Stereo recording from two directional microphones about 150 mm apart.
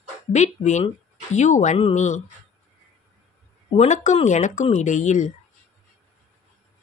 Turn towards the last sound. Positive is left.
turn(degrees=55)  # may be behind; listen again after turning